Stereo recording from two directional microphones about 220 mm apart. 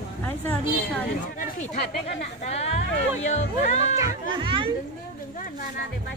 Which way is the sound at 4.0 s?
20° right (ahead or behind).